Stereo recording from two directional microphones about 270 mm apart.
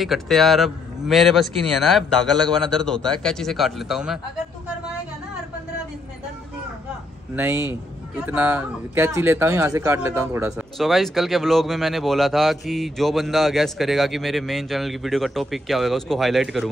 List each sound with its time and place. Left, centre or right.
0.0 s speech: centre
7.3 s a man's voice: centre